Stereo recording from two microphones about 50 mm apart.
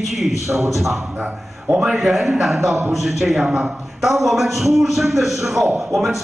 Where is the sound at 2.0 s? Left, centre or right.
Centre.